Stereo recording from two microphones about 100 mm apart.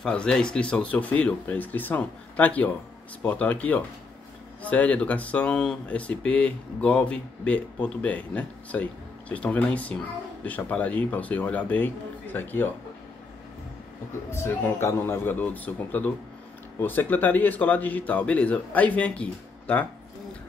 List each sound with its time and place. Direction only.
0.0 s speech: 10° left (ahead or behind)
14.3 s a man's voice: 25° left (ahead or behind)